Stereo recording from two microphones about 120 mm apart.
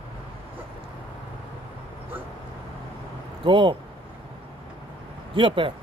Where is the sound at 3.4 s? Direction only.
45° right (ahead or behind).